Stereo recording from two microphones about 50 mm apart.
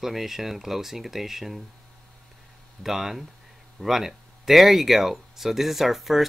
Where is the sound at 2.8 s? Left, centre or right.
Centre.